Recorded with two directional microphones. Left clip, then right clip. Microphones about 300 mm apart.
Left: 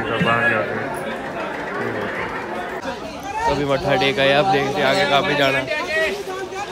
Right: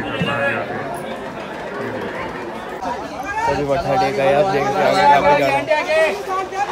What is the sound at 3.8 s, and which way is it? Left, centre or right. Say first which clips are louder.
Speech: even; centre.